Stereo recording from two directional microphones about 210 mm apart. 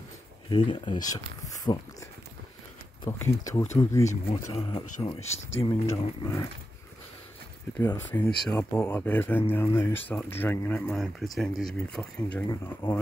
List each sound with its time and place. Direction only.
0.5 s speech: 20° left (ahead or behind)
4.1 s speech: 30° left (ahead or behind)
7.7 s speech: 10° left (ahead or behind)